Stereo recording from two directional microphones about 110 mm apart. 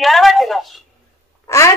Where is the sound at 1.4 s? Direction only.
25° left (ahead or behind).